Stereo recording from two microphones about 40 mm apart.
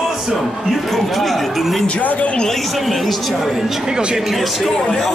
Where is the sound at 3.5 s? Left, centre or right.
Centre.